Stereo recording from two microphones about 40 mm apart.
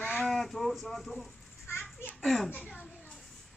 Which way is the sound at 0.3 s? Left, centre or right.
Centre.